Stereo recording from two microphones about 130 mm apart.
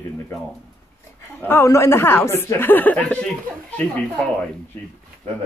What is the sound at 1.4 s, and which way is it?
Speech, 20° left (ahead or behind).